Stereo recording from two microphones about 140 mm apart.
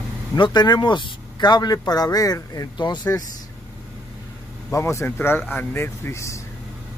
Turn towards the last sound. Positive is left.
turn(degrees=20)  # may be behind; listen again after turning